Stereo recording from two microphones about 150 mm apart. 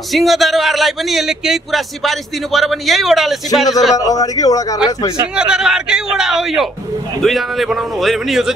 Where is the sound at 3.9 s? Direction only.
25° left (ahead or behind).